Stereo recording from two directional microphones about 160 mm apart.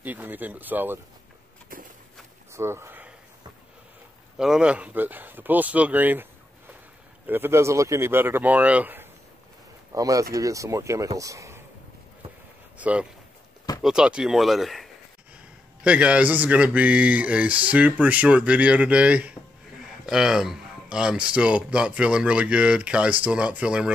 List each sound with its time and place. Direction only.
0.0 s a man's voice: 10° right (ahead or behind)
2.5 s speech: 15° right (ahead or behind)
4.4 s a man's voice: 5° right (ahead or behind)
7.2 s a man's voice: 15° right (ahead or behind)
12.7 s a man's voice: 10° right (ahead or behind)